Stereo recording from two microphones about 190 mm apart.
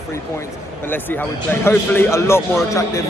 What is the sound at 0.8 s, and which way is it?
Speech, 10° left (ahead or behind).